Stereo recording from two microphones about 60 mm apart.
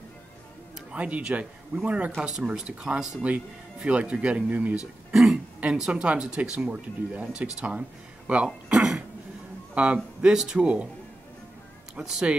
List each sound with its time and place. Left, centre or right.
0.9 s speech: right
2.2 s speech: centre
4.7 s speech: centre
9.8 s speech: right
10.2 s speech: centre
11.9 s speech: centre